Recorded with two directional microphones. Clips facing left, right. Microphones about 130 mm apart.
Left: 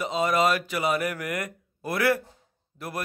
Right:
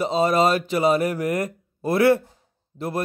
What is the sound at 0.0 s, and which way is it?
Speech, 30° right (ahead or behind).